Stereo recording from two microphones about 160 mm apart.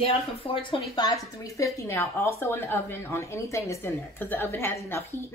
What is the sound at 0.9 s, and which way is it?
A woman's voice, 25° left (ahead or behind).